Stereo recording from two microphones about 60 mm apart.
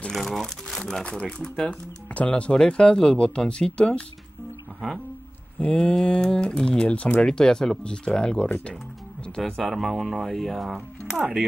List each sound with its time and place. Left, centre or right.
0.1 s crumpling: centre
1.1 s speech: centre
1.7 s speech: left
5.8 s speech: centre
9.4 s speech: centre